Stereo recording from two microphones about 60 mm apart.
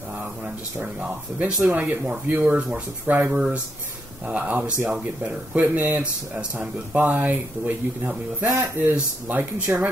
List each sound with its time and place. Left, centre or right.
0.9 s speech: right
3.1 s speech: right
3.3 s speech: centre; by 9.8 s right